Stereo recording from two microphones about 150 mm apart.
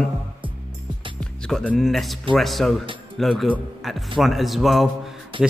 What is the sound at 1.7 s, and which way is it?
Speech, centre (ahead or behind).